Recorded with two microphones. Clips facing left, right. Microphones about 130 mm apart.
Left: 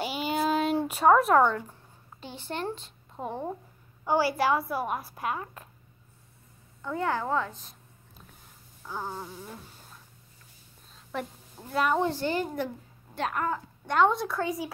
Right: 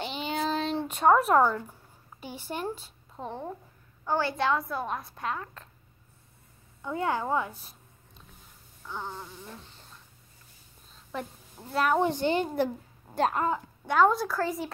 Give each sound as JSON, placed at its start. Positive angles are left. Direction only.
{"t": 0.0, "sound": "a sound", "side_deg": 10}
{"t": 1.7, "sound": "speech", "side_deg": -10}
{"t": 3.2, "sound": "a woman's voice", "side_deg": 10}
{"t": 6.8, "sound": "a woman's voice", "side_deg": -15}
{"t": 8.8, "sound": "a sound", "side_deg": 10}
{"t": 11.7, "sound": "a woman's voice", "side_deg": 0}
{"t": 12.0, "sound": "a woman's voice", "side_deg": -20}
{"t": 13.8, "sound": "a woman's voice", "side_deg": -5}